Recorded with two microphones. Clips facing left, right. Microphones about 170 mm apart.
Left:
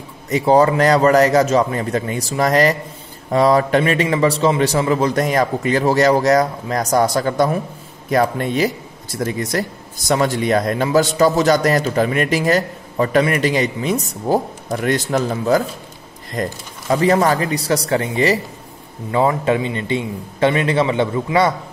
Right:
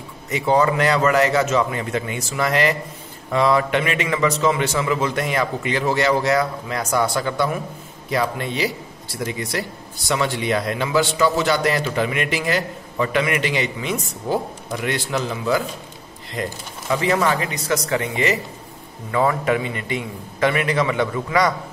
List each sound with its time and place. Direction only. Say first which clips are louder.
0.3 s a man's voice: left 5 dB; 35° left (ahead or behind)